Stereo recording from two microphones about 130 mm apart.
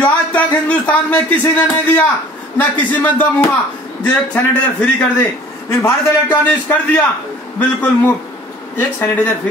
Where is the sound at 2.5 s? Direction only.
15° left (ahead or behind).